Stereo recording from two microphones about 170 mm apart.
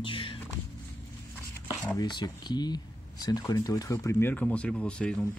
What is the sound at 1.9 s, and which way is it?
Speech, 25° left (ahead or behind).